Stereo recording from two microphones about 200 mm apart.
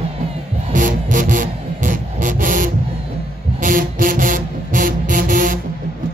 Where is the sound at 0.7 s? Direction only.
40° right (ahead or behind).